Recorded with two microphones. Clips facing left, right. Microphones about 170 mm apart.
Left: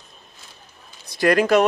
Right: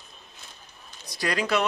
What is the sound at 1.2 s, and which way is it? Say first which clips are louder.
Speech: left 9 dB; 55° left (ahead or behind).